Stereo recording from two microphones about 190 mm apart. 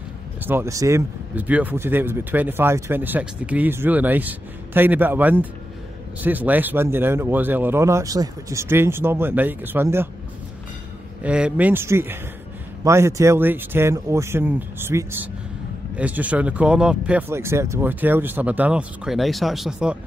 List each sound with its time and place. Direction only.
0.4 s speech: 10° right (ahead or behind)
11.2 s speech: 5° right (ahead or behind)